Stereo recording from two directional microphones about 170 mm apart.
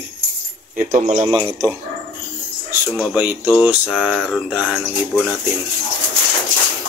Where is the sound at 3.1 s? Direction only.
10° right (ahead or behind).